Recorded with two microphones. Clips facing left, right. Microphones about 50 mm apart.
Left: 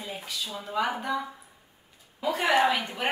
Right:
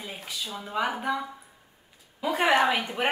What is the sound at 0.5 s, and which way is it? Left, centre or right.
Speech, centre.